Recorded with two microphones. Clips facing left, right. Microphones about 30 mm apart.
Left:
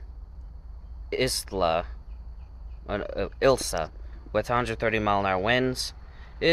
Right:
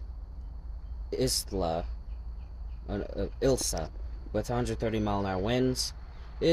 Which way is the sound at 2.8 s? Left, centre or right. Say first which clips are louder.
Left 5 dB; left.